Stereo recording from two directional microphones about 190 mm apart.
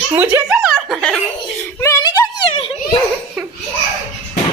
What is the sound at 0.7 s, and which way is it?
Snicker, centre (ahead or behind).